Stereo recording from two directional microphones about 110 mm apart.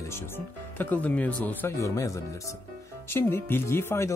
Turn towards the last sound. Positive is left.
turn(degrees=25)  # may be behind; listen again after turning